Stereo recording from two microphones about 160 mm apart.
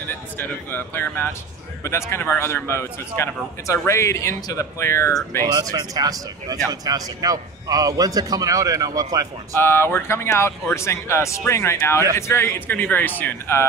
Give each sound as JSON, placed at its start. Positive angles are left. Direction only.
{"t": 0.4, "sound": "a man's voice", "side_deg": 15}
{"t": 5.5, "sound": "a man's voice", "side_deg": -25}
{"t": 9.6, "sound": "a man's voice", "side_deg": 15}